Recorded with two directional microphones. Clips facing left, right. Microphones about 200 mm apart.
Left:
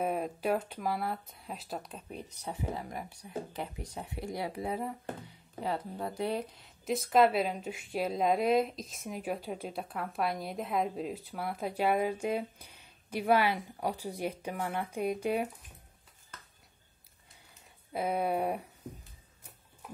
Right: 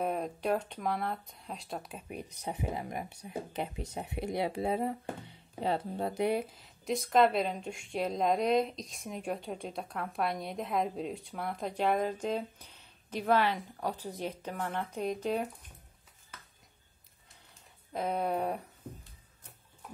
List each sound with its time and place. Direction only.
0.0 s speech: 5° left (ahead or behind); by 6.4 s 20° right (ahead or behind)
6.4 s speech: centre (ahead or behind)
17.9 s a sound: 10° left (ahead or behind)